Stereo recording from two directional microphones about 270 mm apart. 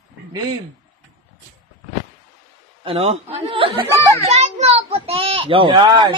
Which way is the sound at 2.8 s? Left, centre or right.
Right.